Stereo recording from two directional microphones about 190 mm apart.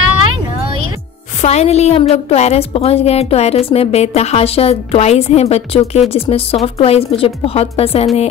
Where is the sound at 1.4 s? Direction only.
35° left (ahead or behind).